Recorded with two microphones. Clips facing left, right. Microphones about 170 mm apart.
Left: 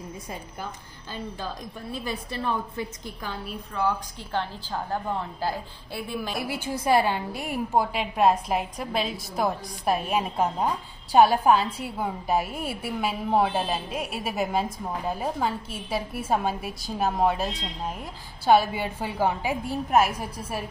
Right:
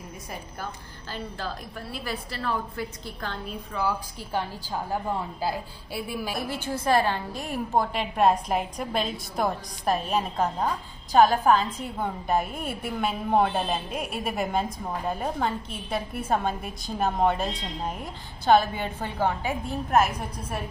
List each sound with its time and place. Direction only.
1.4 s a woman's voice: 20° left (ahead or behind)
3.7 s a woman's voice: 5° right (ahead or behind)
6.3 s a woman's voice: 10° left (ahead or behind)